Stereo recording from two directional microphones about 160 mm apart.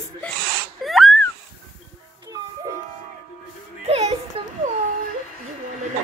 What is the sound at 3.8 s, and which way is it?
Music, 40° right (ahead or behind).